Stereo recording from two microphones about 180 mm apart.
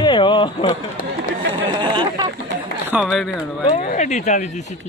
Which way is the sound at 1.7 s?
25° right (ahead or behind).